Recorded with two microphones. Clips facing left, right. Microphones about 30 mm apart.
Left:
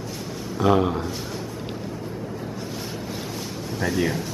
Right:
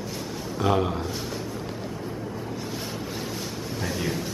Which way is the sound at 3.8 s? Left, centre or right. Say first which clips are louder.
Left 6 dB; centre.